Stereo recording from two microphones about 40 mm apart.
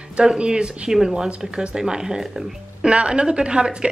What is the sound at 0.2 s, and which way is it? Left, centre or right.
A woman's voice, right.